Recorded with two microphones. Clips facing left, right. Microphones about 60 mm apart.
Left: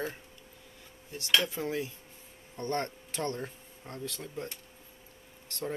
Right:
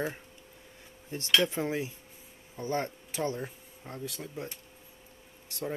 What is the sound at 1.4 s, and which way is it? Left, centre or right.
Speech, right.